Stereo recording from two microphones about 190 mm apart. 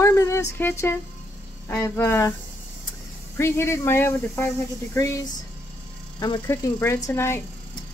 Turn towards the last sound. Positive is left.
turn(degrees=15)  # may be behind; listen again after turning